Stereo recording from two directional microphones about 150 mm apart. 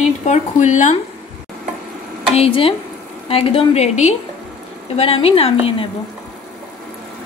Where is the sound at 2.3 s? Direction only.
40° left (ahead or behind).